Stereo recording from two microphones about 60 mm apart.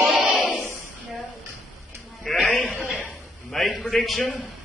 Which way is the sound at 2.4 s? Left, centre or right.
Left.